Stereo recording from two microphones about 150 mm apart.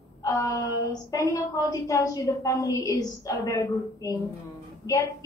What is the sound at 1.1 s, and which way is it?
A woman's voice, 20° left (ahead or behind).